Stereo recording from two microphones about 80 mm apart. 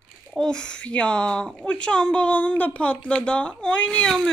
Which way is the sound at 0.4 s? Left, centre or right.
Centre.